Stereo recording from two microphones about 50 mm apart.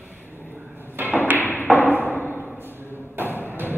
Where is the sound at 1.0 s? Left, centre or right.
Right.